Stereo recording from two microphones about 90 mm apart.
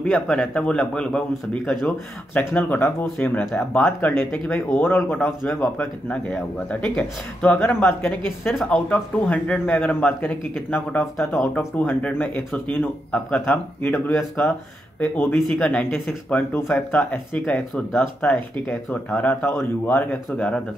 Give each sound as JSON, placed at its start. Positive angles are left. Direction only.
{"t": 0.0, "sound": "a man's voice", "side_deg": 10}
{"t": 2.5, "sound": "speech", "side_deg": 20}
{"t": 4.3, "sound": "a man's voice", "side_deg": 10}
{"t": 4.6, "sound": "a man's voice", "side_deg": 20}
{"t": 10.5, "sound": "speech", "side_deg": 5}
{"t": 11.5, "sound": "a man's voice", "side_deg": 15}
{"t": 15.5, "sound": "a man's voice", "side_deg": 10}
{"t": 19.9, "sound": "speech", "side_deg": 25}
{"t": 20.3, "sound": "a man's voice", "side_deg": 15}